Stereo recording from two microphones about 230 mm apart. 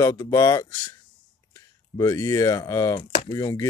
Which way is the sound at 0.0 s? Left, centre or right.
Centre.